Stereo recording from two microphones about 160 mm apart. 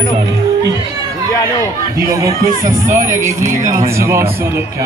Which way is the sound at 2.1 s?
20° right (ahead or behind).